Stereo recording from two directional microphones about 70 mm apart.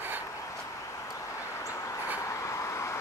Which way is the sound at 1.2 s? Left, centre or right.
Left.